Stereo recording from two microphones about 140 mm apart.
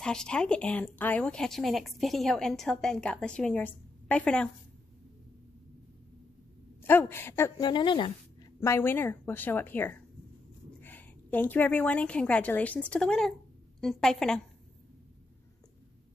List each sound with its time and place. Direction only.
0.0 s a woman's voice: 5° left (ahead or behind)
6.8 s a woman's voice: 15° left (ahead or behind); by 8.1 s 35° left (ahead or behind)
8.5 s a woman's voice: 15° left (ahead or behind)